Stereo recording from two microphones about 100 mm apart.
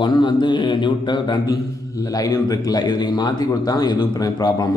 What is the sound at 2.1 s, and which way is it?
Speech, 40° left (ahead or behind).